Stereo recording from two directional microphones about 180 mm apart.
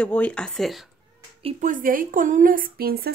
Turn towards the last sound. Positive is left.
turn(degrees=-60)  # may be behind; listen again after turning